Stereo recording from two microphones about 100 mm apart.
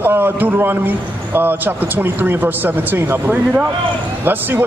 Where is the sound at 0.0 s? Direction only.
20° right (ahead or behind).